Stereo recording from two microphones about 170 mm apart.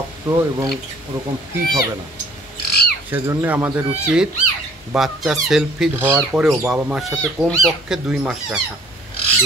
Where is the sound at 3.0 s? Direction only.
10° right (ahead or behind).